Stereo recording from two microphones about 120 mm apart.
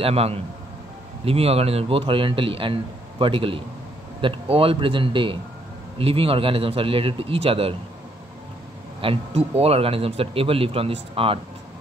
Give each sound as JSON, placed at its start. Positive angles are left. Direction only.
{"t": 0.0, "sound": "a man's voice", "side_deg": -55}
{"t": 9.0, "sound": "a man's voice", "side_deg": -55}